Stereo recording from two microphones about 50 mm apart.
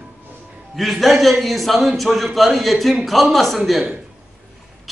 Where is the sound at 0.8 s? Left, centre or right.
Centre.